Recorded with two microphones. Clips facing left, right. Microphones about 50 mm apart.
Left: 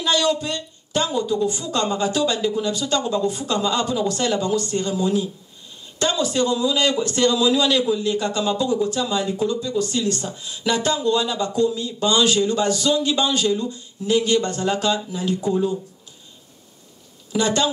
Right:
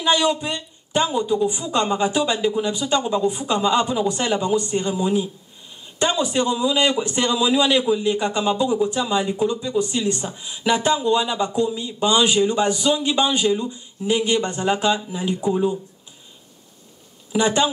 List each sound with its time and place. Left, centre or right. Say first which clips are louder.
0.0 s a man's voice: right 1 dB; centre
17.3 s a woman's voice: right 2 dB; centre